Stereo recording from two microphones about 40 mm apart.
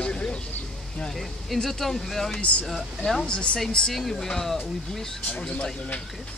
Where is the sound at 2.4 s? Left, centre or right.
Left.